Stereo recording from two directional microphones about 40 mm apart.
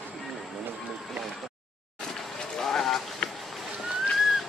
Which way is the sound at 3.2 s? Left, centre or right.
Left.